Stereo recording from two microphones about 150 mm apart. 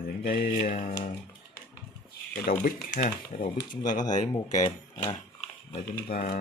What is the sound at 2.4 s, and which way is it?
Speech, 70° left (ahead or behind).